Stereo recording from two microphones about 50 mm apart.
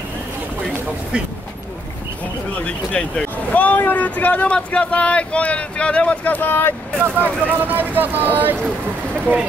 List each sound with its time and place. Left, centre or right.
2.5 s a sound: left
3.5 s speech: left
7.2 s speech: right
9.1 s speech: right